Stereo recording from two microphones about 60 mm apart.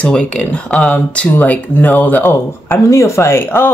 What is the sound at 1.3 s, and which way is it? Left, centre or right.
Speech, left.